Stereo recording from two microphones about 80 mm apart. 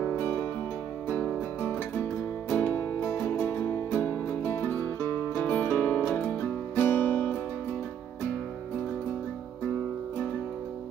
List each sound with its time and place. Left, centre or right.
0.2 s music: left
3.2 s music: left
5.4 s music: left